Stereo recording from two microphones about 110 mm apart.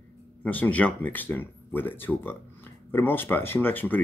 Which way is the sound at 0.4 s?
15° left (ahead or behind).